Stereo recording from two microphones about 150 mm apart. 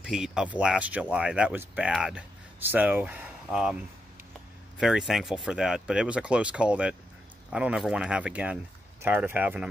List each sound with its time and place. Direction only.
0.0 s speech: 5° right (ahead or behind)
4.7 s speech: 5° right (ahead or behind)